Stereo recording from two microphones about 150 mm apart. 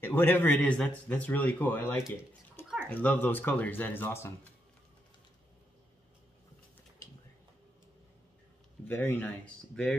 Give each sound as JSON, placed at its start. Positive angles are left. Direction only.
{"t": 0.0, "sound": "a man's voice", "side_deg": 15}
{"t": 2.6, "sound": "a sound", "side_deg": 15}
{"t": 2.9, "sound": "a man's voice", "side_deg": 10}
{"t": 8.8, "sound": "a man's voice", "side_deg": 10}